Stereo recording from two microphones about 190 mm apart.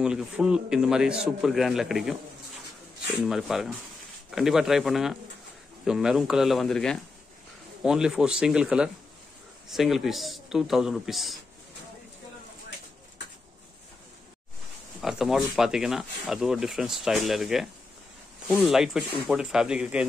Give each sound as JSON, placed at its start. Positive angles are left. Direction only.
{"t": 0.0, "sound": "speech", "side_deg": -5}
{"t": 3.3, "sound": "speech", "side_deg": 0}
{"t": 15.0, "sound": "speech", "side_deg": 0}